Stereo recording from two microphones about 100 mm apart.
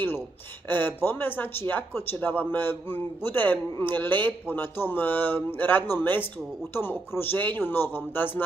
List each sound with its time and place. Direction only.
0.7 s speech: 20° left (ahead or behind)